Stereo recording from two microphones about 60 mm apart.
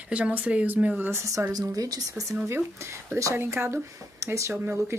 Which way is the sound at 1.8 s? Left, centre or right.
Right.